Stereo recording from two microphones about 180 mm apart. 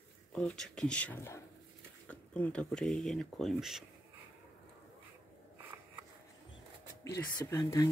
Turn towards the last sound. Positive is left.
turn(degrees=20)  # may be behind; listen again after turning